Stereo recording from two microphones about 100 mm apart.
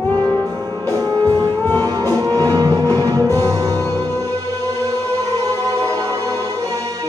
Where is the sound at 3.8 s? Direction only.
25° left (ahead or behind).